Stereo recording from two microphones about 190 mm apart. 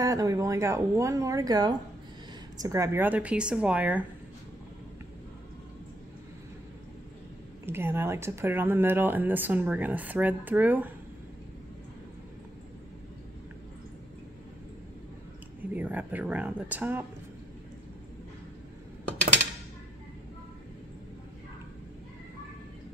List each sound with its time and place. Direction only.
0.0 s speech: 20° right (ahead or behind)
7.6 s speech: 10° right (ahead or behind)
15.7 s speech: 10° right (ahead or behind)